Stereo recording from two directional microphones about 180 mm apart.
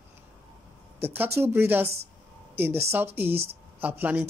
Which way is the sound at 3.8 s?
10° right (ahead or behind).